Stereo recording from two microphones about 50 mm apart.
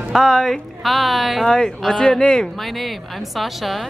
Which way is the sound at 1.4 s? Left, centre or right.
Centre.